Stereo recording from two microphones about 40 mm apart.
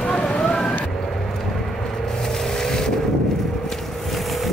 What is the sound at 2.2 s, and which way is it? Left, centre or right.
Boat, centre.